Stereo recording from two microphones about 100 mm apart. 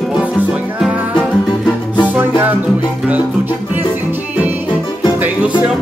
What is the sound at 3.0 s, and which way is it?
Music, 15° right (ahead or behind).